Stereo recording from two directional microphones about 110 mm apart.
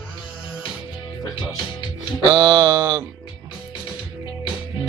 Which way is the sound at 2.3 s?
40° right (ahead or behind).